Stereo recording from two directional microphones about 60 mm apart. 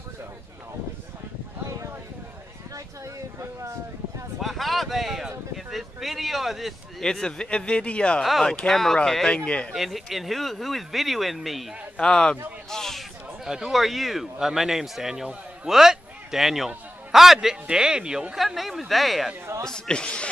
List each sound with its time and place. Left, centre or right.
1.6 s a sound: right
4.4 s a man's voice: centre
7.0 s speech: centre
8.2 s a man's voice: centre
9.7 s a man's voice: centre
12.0 s speech: centre
13.5 s a man's voice: centre
19.6 s speech: centre